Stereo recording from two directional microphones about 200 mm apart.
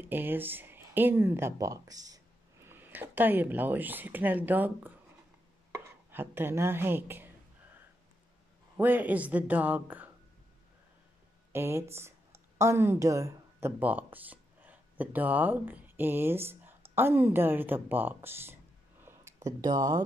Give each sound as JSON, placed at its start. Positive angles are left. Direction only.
{"t": 0.0, "sound": "speech", "side_deg": -10}
{"t": 8.7, "sound": "speech", "side_deg": -10}
{"t": 11.5, "sound": "speech", "side_deg": -10}
{"t": 19.0, "sound": "a sound", "side_deg": -15}